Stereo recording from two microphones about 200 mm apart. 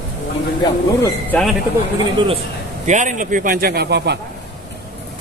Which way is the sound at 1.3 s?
10° left (ahead or behind).